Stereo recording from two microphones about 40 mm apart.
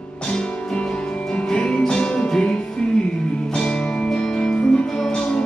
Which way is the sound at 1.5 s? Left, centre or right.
Centre.